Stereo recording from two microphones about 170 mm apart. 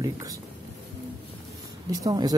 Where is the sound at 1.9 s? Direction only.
25° right (ahead or behind).